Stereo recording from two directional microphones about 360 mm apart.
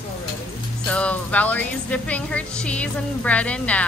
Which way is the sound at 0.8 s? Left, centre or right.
Centre.